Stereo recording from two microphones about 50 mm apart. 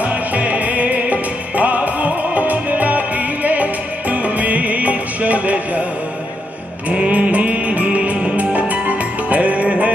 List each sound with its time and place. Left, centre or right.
0.0 s music: right
6.9 s music: right